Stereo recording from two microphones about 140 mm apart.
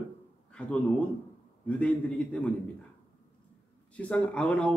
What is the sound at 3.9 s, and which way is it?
Speech, 10° left (ahead or behind).